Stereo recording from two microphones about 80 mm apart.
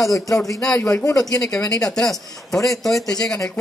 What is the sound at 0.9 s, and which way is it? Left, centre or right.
Speech, left.